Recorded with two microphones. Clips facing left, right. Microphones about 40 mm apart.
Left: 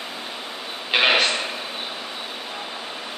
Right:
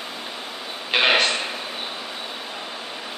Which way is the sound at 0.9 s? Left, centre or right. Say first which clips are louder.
Even; centre.